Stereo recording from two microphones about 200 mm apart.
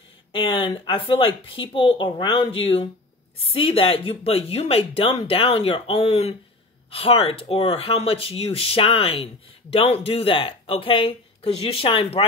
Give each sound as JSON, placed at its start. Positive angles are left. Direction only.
{"t": 0.3, "sound": "speech", "side_deg": 25}